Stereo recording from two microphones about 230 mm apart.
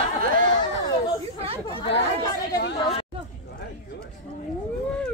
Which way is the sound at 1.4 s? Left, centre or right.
Right.